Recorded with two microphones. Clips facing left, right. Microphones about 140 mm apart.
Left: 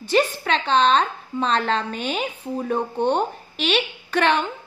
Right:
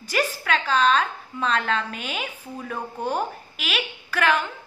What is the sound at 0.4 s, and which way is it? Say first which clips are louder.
A woman's voice: left 3 dB; 30° left (ahead or behind).